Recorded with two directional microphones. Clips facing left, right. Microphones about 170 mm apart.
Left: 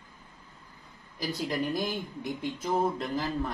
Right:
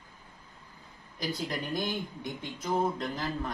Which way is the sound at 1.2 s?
Centre (ahead or behind).